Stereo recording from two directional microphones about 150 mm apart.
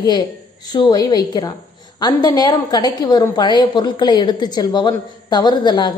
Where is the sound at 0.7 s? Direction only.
25° left (ahead or behind).